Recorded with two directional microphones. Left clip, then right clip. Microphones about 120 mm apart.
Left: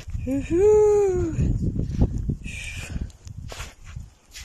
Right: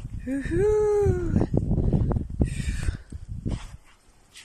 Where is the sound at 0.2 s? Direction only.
15° left (ahead or behind).